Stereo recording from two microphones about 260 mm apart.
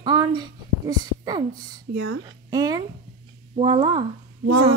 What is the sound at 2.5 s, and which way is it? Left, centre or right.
A child's voice, centre.